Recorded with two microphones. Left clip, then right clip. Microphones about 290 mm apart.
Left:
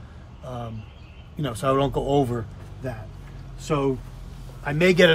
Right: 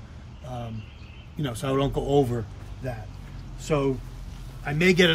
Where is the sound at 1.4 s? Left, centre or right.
Centre.